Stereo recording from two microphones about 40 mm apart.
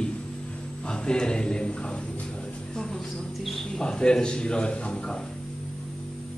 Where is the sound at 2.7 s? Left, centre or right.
Centre.